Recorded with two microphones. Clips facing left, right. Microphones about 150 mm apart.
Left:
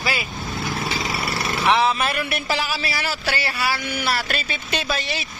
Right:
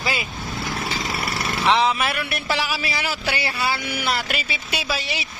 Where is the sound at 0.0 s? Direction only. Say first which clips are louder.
Even; 20° right (ahead or behind).